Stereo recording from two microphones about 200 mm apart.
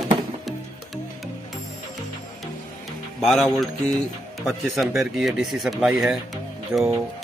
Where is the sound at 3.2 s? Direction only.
Centre (ahead or behind).